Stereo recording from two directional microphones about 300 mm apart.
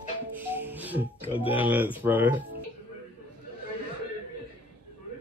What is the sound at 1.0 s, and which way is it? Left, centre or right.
Speech, centre.